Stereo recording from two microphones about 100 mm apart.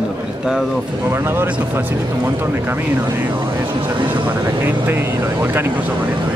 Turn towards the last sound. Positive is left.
turn(degrees=-25)  # may be behind; listen again after turning